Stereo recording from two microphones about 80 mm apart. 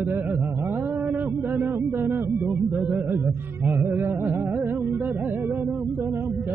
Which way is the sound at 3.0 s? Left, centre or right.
Right.